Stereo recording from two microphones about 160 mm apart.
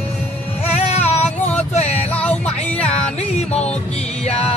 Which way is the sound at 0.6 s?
40° left (ahead or behind).